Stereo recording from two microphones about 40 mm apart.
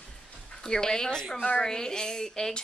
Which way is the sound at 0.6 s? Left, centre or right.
Centre.